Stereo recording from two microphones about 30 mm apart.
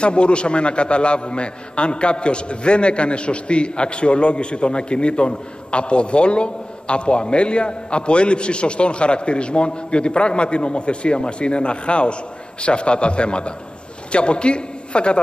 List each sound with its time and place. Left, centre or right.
0.0 s a man's voice: left